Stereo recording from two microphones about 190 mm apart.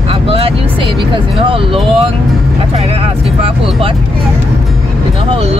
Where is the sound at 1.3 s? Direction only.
30° right (ahead or behind).